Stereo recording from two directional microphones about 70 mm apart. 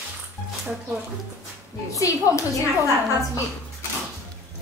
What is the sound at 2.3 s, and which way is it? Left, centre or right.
Speech, left.